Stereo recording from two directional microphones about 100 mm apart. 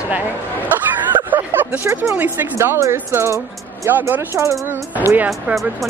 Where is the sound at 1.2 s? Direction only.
20° right (ahead or behind).